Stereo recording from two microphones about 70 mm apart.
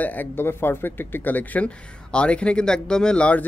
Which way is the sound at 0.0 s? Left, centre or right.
Left.